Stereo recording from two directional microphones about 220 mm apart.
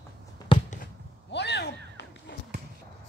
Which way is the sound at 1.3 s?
50° left (ahead or behind).